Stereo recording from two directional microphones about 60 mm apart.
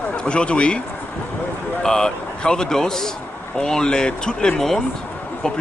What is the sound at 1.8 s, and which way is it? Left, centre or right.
Speech, centre.